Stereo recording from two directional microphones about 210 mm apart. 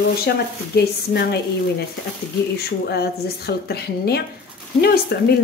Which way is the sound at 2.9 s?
50° left (ahead or behind).